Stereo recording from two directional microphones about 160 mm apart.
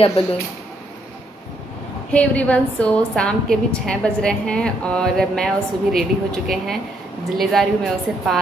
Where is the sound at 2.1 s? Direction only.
10° left (ahead or behind).